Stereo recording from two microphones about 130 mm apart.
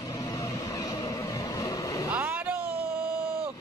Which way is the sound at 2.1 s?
15° right (ahead or behind).